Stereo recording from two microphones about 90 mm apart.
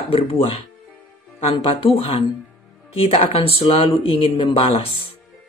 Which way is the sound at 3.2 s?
90° left.